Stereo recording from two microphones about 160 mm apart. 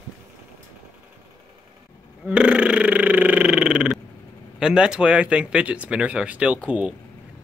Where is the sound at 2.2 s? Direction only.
5° right (ahead or behind).